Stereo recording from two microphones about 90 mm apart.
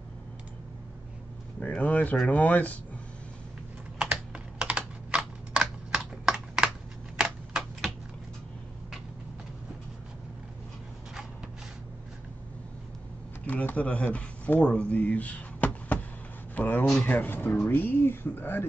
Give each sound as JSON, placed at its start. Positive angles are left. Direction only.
{"t": 1.6, "sound": "a sound", "side_deg": 15}
{"t": 2.2, "sound": "speech", "side_deg": 15}
{"t": 4.0, "sound": "typing", "side_deg": -15}
{"t": 7.2, "sound": "typewriter", "side_deg": -10}
{"t": 13.5, "sound": "a sound", "side_deg": 15}
{"t": 16.5, "sound": "speech", "side_deg": 20}